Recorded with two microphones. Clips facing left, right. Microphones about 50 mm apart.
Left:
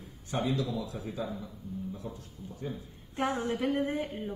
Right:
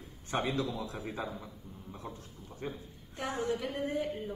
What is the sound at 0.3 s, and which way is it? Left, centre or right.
Speech, right.